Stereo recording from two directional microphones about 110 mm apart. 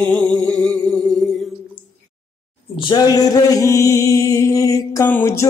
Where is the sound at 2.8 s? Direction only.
40° left (ahead or behind).